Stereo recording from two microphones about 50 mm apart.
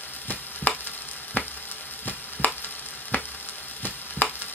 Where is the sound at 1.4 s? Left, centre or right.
Left.